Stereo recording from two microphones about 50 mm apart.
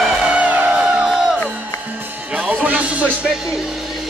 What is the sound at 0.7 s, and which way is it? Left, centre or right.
Music, centre.